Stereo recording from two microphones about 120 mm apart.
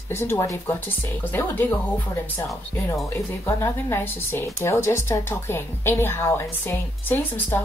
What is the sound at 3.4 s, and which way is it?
Speech, 20° left (ahead or behind).